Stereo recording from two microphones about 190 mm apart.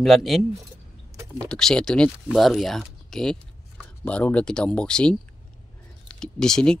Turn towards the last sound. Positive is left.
turn(degrees=5)  # may be behind; listen again after turning